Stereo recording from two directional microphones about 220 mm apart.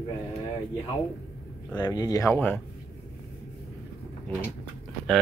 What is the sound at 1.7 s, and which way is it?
Speech, 20° left (ahead or behind).